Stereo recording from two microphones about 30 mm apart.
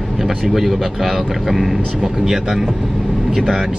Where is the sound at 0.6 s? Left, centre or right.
Centre.